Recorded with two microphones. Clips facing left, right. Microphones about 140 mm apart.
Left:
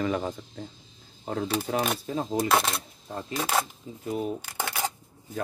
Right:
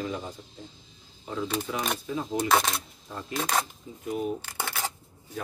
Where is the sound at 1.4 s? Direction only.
40° left (ahead or behind).